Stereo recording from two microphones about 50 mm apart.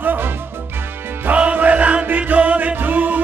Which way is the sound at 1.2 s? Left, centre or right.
Right.